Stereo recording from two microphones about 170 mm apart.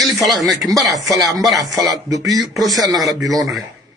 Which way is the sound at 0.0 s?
Centre (ahead or behind).